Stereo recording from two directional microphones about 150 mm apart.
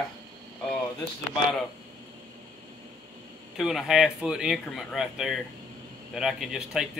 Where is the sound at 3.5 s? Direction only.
Centre (ahead or behind).